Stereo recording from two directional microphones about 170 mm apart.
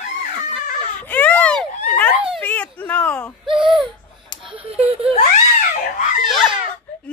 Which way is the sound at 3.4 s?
30° right (ahead or behind).